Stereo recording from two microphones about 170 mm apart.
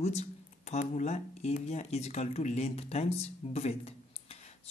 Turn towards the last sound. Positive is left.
turn(degrees=40)  # may be behind; listen again after turning